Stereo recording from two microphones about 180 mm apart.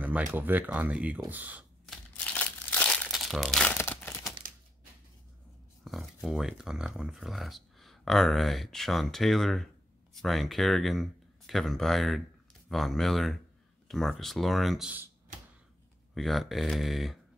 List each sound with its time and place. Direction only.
0.0 s speech: 10° right (ahead or behind)
1.9 s crumpling: 5° left (ahead or behind)
4.4 s typewriter: 50° right (ahead or behind)
5.9 s speech: centre (ahead or behind)
16.2 s speech: centre (ahead or behind)